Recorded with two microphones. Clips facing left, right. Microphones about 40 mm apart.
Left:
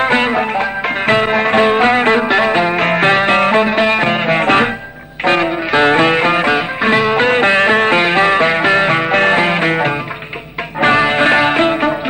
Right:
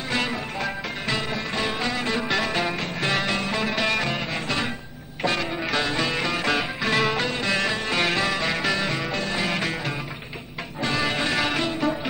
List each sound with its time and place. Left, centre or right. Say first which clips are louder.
0.0 s music: left 13 dB; left
2.8 s music: left 13 dB; left
3.6 s music: left 11 dB; left
6.4 s music: left 10 dB; left
7.2 s music: left 13 dB; left